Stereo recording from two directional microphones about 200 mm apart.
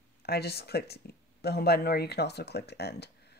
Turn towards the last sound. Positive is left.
turn(degrees=55)  # may be behind; listen again after turning